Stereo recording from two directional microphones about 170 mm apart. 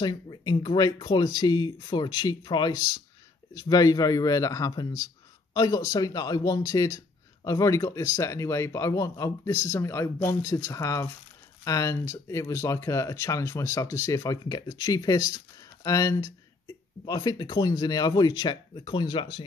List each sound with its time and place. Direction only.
0.0 s speech: 25° left (ahead or behind)